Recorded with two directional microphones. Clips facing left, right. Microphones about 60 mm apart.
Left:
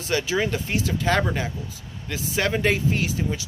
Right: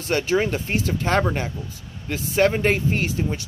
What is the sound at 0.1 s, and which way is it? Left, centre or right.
Speech, right.